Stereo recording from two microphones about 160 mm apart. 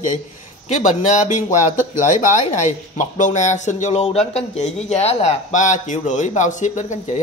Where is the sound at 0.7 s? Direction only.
50° left (ahead or behind).